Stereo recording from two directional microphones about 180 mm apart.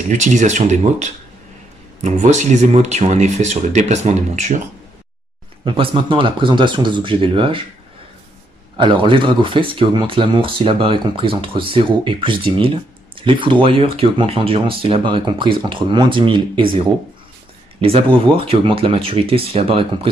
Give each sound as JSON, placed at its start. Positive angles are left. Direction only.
{"t": 0.1, "sound": "speech", "side_deg": -45}
{"t": 2.0, "sound": "speech", "side_deg": -40}
{"t": 5.7, "sound": "speech", "side_deg": -30}
{"t": 8.7, "sound": "speech", "side_deg": -30}